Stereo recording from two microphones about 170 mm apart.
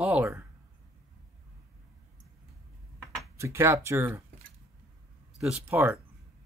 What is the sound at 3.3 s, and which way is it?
Speech, 15° right (ahead or behind).